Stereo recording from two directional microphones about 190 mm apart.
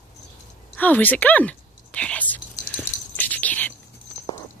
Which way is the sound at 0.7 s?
10° left (ahead or behind).